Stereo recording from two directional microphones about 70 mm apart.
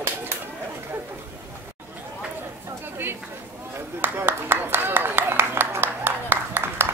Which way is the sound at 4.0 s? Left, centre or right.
Right.